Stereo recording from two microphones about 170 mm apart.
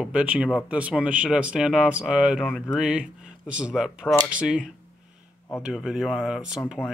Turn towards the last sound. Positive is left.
turn(degrees=-5)  # may be behind; listen again after turning